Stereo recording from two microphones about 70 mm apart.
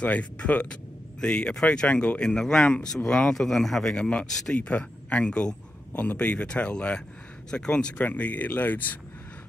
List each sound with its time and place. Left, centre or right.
0.0 s speech: centre